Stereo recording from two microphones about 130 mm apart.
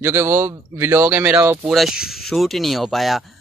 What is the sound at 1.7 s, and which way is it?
Speech, centre (ahead or behind).